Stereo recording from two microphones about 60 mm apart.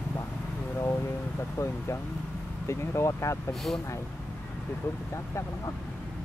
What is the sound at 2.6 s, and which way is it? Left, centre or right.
Speech, left.